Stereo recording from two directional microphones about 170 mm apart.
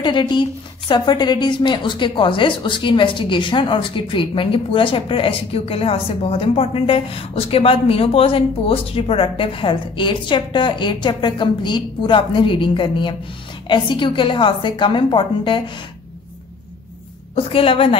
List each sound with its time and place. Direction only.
0.0 s a woman's voice: 30° left (ahead or behind)
17.5 s a woman's voice: 35° left (ahead or behind)